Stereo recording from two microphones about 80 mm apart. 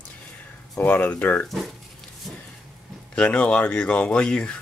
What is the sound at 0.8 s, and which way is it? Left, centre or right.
Speech, centre.